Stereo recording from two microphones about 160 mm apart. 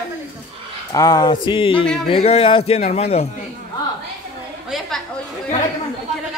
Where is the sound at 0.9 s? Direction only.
25° left (ahead or behind); by 3.2 s 40° left (ahead or behind).